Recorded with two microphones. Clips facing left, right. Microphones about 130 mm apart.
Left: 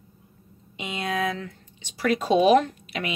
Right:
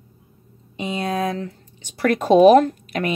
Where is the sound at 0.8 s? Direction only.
35° right (ahead or behind).